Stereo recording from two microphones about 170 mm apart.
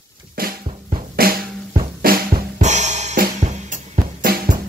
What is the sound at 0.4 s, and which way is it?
Drum, 60° right (ahead or behind).